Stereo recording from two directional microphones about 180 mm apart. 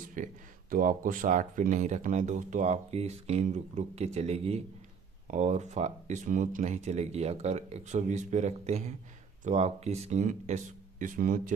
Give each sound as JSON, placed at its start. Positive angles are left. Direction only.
{"t": 0.0, "sound": "speech", "side_deg": -45}